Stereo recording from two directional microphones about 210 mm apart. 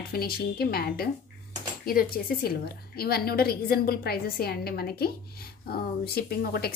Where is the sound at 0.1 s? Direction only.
45° left (ahead or behind).